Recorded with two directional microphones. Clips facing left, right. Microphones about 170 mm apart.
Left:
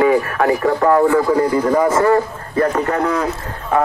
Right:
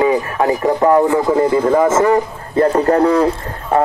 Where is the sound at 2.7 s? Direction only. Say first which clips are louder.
Right 5 dB; 35° right (ahead or behind).